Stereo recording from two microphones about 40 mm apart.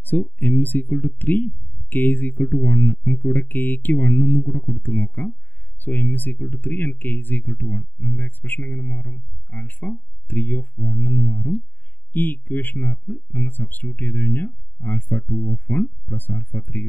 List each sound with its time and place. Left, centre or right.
0.0 s speech: left